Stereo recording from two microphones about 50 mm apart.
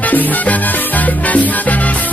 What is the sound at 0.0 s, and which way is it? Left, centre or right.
Salsa music, left.